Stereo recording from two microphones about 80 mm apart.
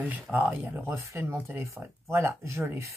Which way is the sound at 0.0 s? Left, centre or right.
Right.